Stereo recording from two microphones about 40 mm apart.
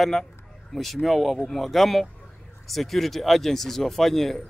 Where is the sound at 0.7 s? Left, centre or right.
Centre.